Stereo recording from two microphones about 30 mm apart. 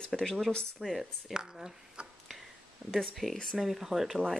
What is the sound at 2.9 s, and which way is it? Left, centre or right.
Speech, centre.